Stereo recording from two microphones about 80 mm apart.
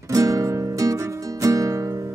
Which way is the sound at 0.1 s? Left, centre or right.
Right.